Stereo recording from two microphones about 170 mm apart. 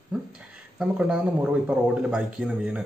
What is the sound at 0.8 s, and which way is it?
A man's voice, 5° right (ahead or behind).